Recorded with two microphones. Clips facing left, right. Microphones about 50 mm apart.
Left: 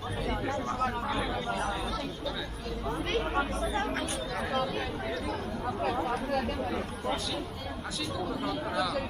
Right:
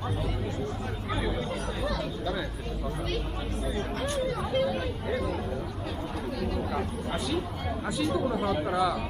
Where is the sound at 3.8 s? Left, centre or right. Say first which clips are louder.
Right 1 dB; left.